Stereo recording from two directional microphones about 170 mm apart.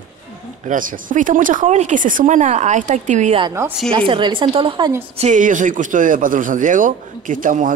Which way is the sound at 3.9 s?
30° right (ahead or behind).